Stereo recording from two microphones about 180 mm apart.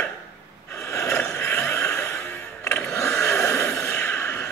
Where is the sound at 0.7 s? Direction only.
15° left (ahead or behind).